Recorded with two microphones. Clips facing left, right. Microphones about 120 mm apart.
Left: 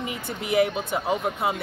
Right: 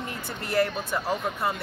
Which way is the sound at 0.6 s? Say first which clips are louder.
Left 2 dB; 15° left (ahead or behind).